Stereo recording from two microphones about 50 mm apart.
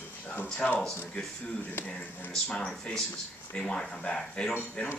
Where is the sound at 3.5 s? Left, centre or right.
Centre.